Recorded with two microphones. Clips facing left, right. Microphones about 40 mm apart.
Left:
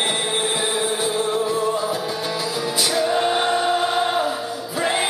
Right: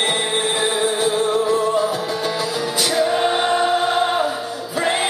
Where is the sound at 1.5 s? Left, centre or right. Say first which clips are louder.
Right 4 dB; right.